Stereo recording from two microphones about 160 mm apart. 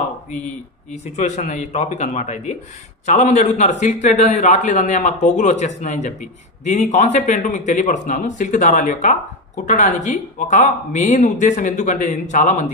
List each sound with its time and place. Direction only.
1.0 s a man's voice: 45° left (ahead or behind)